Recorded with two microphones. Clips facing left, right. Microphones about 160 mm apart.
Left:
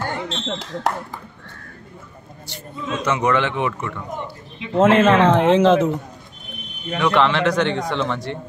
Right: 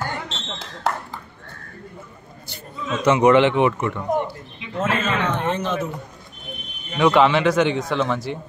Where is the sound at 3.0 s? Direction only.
15° right (ahead or behind).